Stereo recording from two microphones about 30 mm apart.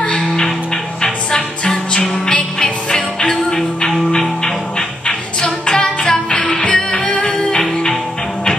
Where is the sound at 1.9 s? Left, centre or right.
Left.